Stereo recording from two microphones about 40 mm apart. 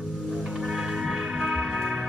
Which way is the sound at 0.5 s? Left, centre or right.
Centre.